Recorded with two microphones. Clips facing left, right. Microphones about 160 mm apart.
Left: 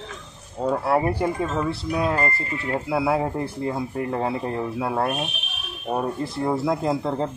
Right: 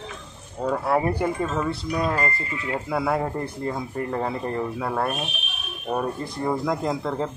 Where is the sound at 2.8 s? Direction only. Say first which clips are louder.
Left 2 dB; 5° left (ahead or behind).